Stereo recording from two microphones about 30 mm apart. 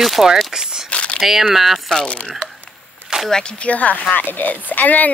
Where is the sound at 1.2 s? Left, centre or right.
Centre.